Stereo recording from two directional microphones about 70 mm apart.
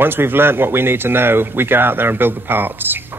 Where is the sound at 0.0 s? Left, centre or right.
Right.